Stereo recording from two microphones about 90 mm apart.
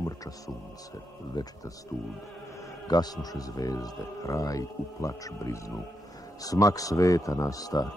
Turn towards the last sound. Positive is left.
turn(degrees=45)  # may be behind; listen again after turning